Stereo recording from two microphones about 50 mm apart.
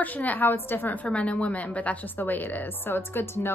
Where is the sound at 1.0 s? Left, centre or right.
Left.